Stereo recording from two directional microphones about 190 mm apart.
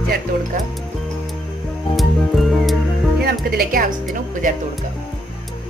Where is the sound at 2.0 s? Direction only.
Centre (ahead or behind).